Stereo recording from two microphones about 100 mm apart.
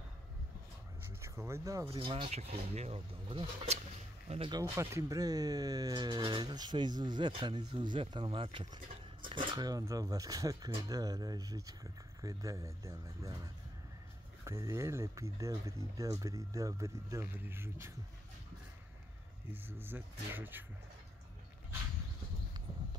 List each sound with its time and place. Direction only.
1.2 s speech: 30° right (ahead or behind)
1.9 s speech: 65° right (ahead or behind)
4.5 s speech: 35° right (ahead or behind)
14.4 s speech: 30° right (ahead or behind)
19.5 s speech: 20° right (ahead or behind)